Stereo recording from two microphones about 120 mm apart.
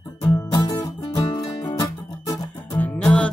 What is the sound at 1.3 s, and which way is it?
Music, 35° left (ahead or behind).